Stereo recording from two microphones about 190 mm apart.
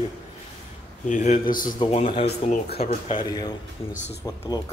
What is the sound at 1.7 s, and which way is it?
Speech, 30° left (ahead or behind).